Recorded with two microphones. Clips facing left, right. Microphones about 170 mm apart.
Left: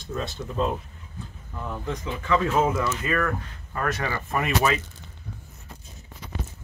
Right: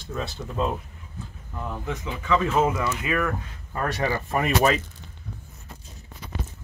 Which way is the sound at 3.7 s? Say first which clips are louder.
Right 2 dB; 30° right (ahead or behind).